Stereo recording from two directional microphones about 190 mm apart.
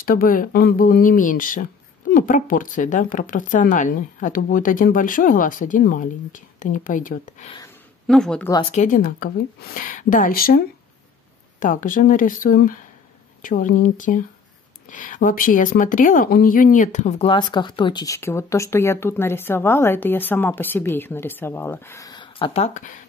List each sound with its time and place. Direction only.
0.0 s speech: 50° left (ahead or behind)
8.1 s speech: 5° left (ahead or behind)
8.5 s a woman's voice: 25° left (ahead or behind)
8.7 s speech: 45° left (ahead or behind)
11.6 s a woman's voice: 45° left (ahead or behind)